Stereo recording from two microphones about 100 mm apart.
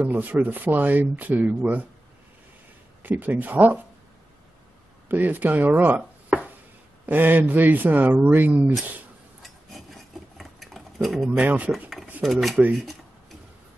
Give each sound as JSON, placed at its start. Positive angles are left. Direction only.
{"t": 0.0, "sound": "speech", "side_deg": -15}
{"t": 3.0, "sound": "speech", "side_deg": -15}
{"t": 5.0, "sound": "speech", "side_deg": -20}
{"t": 9.4, "sound": "a sound", "side_deg": 0}
{"t": 11.3, "sound": "speech", "side_deg": -15}
{"t": 12.2, "sound": "speech", "side_deg": 0}